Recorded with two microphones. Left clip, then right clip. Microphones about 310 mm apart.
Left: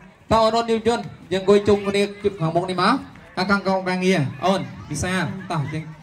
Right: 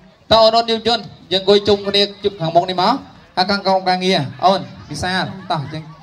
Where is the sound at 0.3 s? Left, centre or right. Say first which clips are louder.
Right 6 dB; right.